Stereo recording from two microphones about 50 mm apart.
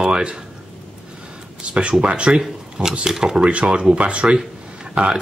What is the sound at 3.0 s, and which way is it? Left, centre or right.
Speech, centre.